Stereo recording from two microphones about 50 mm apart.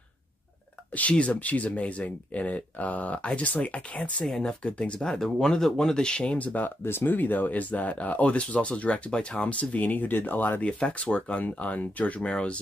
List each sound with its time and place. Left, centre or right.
0.9 s speech: left
4.3 s speech: centre
6.3 s speech: left
6.8 s speech: left
10.6 s speech: left